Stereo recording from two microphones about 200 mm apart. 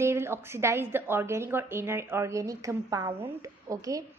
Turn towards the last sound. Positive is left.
turn(degrees=-15)  # may be behind; listen again after turning